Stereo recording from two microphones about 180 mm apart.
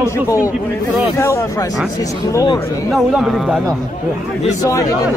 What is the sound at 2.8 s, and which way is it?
Speech, centre (ahead or behind).